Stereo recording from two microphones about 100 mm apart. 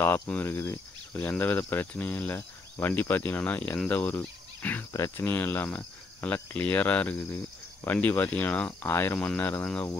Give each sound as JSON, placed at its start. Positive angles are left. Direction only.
{"t": 0.4, "sound": "speech", "side_deg": 25}
{"t": 1.6, "sound": "cricket", "side_deg": 20}
{"t": 4.9, "sound": "speech", "side_deg": 30}
{"t": 5.2, "sound": "cricket", "side_deg": 20}
{"t": 7.8, "sound": "speech", "side_deg": 20}
{"t": 9.3, "sound": "cricket", "side_deg": 20}